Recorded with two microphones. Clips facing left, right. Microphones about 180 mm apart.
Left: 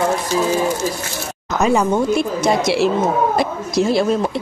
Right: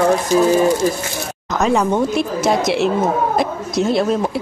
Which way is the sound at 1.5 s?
Centre (ahead or behind).